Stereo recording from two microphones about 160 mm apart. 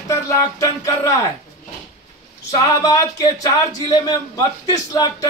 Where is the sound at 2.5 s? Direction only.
20° left (ahead or behind).